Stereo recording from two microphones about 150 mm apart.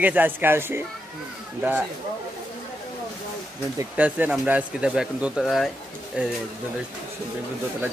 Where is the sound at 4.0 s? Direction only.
10° right (ahead or behind).